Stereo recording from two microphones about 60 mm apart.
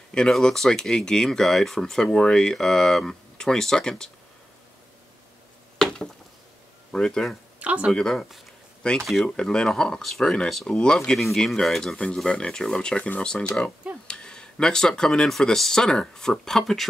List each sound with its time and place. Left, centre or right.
0.4 s speech: centre
6.9 s speech: centre
7.6 s speech: right
7.9 s speech: centre
11.1 s speech: centre